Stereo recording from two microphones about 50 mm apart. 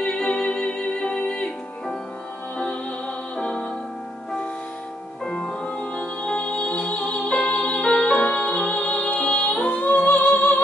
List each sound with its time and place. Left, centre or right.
0.0 s music: left
5.2 s music: centre